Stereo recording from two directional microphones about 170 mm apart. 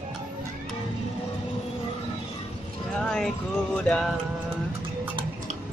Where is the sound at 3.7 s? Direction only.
5° left (ahead or behind).